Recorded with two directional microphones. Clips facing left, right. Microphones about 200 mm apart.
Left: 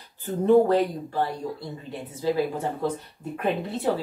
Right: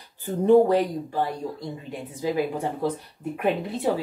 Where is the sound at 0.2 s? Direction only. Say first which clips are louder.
Right 1 dB; 15° right (ahead or behind).